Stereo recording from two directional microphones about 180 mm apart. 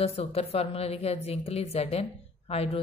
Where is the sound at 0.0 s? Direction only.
35° left (ahead or behind).